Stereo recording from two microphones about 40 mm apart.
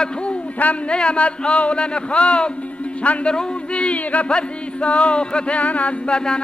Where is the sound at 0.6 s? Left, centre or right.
Left.